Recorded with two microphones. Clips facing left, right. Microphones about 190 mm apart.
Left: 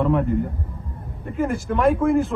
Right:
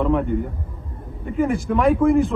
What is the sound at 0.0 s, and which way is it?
A man's voice, centre (ahead or behind).